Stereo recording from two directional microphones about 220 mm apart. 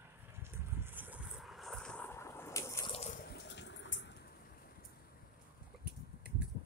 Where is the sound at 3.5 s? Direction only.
55° left (ahead or behind).